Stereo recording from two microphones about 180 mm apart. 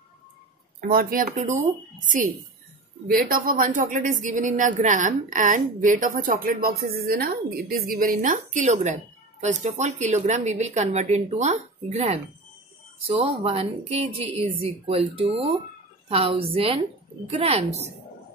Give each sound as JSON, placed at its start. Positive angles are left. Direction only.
{"t": 0.9, "sound": "a woman's voice", "side_deg": -45}